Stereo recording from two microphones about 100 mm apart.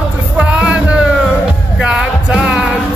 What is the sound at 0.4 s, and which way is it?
Music, 10° right (ahead or behind).